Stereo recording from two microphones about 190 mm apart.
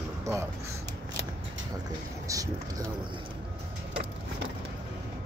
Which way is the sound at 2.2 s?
15° right (ahead or behind).